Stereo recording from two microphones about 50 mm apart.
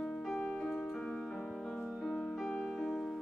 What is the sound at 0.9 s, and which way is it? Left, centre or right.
Music, centre.